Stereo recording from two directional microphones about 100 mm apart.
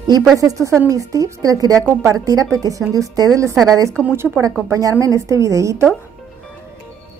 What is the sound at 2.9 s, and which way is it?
Speech, 35° right (ahead or behind).